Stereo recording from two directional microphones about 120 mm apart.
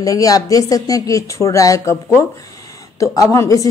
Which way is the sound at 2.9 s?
25° left (ahead or behind).